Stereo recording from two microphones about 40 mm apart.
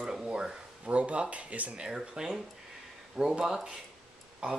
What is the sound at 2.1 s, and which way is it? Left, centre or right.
Speech, centre.